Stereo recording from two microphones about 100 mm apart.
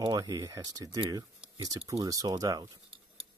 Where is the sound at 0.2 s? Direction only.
35° right (ahead or behind).